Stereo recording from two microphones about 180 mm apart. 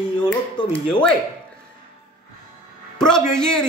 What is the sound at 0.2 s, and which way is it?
Speech, 25° left (ahead or behind).